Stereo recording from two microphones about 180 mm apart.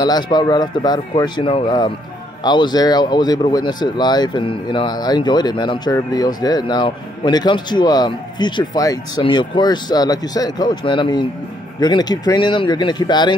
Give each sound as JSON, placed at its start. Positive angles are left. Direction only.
{"t": 0.0, "sound": "speech", "side_deg": 25}